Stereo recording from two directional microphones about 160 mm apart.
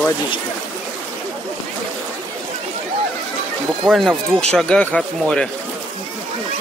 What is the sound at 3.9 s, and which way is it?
Speech, centre (ahead or behind).